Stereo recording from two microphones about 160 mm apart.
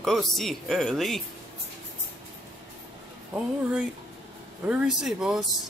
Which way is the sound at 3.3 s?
5° right (ahead or behind).